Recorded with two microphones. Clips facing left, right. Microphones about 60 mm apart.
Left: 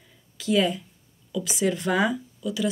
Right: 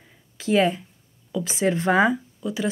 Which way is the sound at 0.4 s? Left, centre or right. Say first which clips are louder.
Right 3 dB; right.